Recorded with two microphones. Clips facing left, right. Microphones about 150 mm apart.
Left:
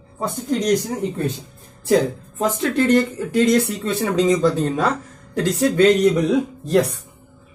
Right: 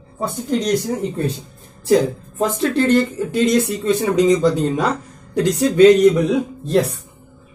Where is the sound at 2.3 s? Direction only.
30° right (ahead or behind).